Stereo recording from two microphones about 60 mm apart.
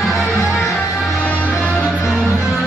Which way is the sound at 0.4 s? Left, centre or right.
Centre.